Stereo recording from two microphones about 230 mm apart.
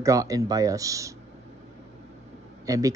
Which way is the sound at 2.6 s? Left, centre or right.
Centre.